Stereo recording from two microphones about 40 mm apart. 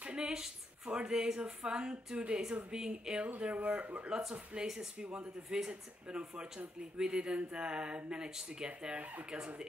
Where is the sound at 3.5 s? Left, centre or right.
Right.